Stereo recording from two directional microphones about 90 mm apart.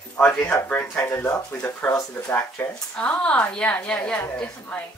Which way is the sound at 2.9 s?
10° left (ahead or behind).